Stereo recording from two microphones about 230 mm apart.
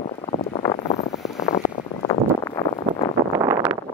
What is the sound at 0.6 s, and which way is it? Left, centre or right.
Vehicle, centre.